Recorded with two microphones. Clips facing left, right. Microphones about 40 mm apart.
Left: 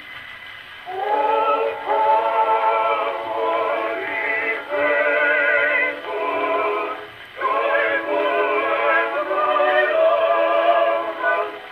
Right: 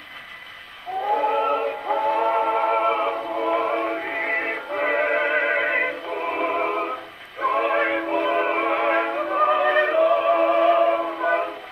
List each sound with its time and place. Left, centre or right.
1.1 s a sound: left
1.5 s synthetic singing: left
2.6 s music: left
7.5 s synthetic singing: left
8.1 s music: left
9.3 s music: centre
9.6 s music: left